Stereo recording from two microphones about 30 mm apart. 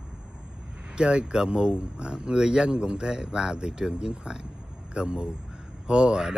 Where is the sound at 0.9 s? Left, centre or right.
Right.